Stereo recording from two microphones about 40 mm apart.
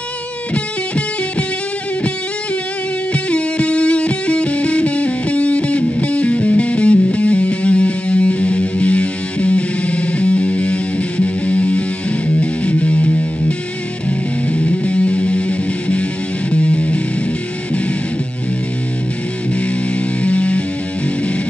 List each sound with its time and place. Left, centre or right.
3.1 s music: left
20.2 s music: left